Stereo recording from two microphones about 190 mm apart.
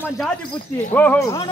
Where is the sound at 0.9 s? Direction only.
10° left (ahead or behind).